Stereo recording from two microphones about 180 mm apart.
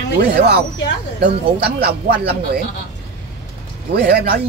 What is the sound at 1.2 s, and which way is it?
Speech, 60° right (ahead or behind).